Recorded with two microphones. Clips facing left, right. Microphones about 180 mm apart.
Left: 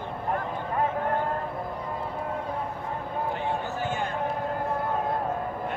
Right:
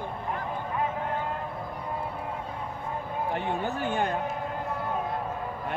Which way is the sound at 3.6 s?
60° right (ahead or behind).